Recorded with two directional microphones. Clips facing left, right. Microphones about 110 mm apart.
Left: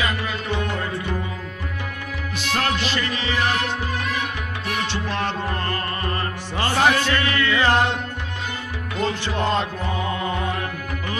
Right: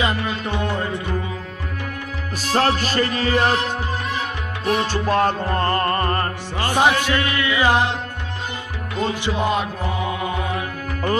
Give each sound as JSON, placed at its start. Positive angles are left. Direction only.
{"t": 2.3, "sound": "music", "side_deg": -40}
{"t": 6.6, "sound": "music", "side_deg": -15}
{"t": 9.2, "sound": "music", "side_deg": -10}